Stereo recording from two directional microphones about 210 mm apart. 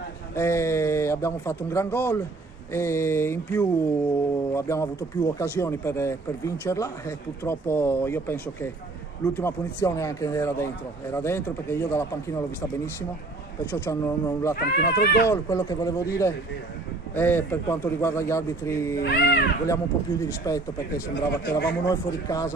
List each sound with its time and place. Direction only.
0.4 s speech: 15° left (ahead or behind)
13.7 s speech: 15° left (ahead or behind)
14.5 s speech: 45° left (ahead or behind)
15.2 s speech: 10° left (ahead or behind)
19.0 s speech: 50° left (ahead or behind)
19.6 s speech: 15° left (ahead or behind)
21.1 s speech: 55° left (ahead or behind)
21.8 s speech: 15° left (ahead or behind)